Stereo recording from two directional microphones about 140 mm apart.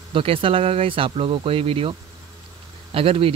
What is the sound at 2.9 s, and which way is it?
Speech, 40° right (ahead or behind).